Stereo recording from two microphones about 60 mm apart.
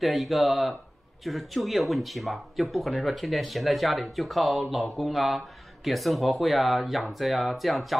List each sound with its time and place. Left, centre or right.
0.0 s speech: centre